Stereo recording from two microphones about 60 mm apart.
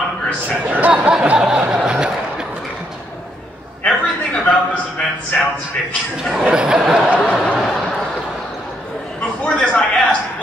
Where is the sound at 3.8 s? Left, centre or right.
Centre.